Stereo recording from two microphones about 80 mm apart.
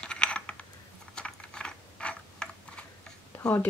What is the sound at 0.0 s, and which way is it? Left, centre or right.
Computer keyboard, centre.